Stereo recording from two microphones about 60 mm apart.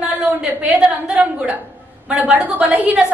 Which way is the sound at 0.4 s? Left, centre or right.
Centre.